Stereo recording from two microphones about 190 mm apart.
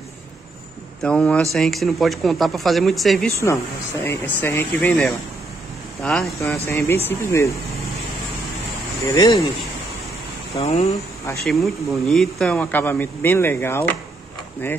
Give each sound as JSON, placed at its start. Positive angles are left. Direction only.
{"t": 1.0, "sound": "speech", "side_deg": 5}
{"t": 4.0, "sound": "speech", "side_deg": 10}
{"t": 6.7, "sound": "speech", "side_deg": 15}
{"t": 9.1, "sound": "speech", "side_deg": 20}
{"t": 10.5, "sound": "speech", "side_deg": 35}
{"t": 11.4, "sound": "speech", "side_deg": 0}